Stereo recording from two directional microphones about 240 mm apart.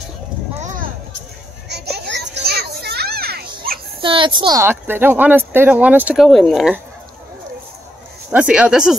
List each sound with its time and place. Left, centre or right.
0.6 s a sound: right
1.7 s children playing: right
4.0 s speech: right; by 6.8 s centre
8.3 s speech: centre